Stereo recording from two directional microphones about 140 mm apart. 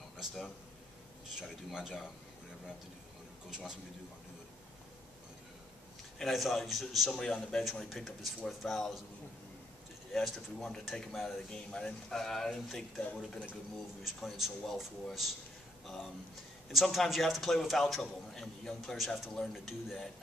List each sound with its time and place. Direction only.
1.3 s speech: 5° right (ahead or behind)
3.4 s speech: 5° right (ahead or behind)
6.1 s speech: centre (ahead or behind)
10.1 s speech: centre (ahead or behind)
16.7 s speech: centre (ahead or behind)